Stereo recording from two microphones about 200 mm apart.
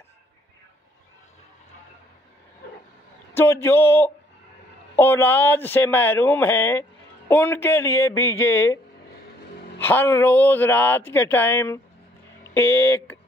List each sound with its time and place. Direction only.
3.3 s speech: 10° left (ahead or behind)
9.8 s speech: 10° left (ahead or behind)